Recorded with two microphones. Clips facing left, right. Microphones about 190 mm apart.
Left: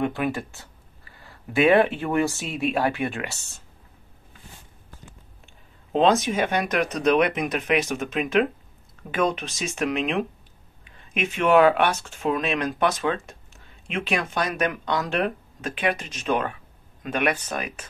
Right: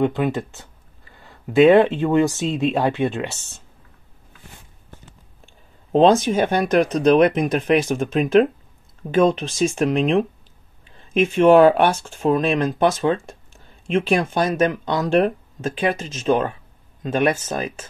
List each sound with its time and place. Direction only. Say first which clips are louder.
0.0 s speech: right 5 dB; 20° right (ahead or behind)
5.9 s speech: right 5 dB; 30° right (ahead or behind)